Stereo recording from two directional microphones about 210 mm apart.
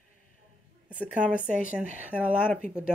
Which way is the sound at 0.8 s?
5° right (ahead or behind).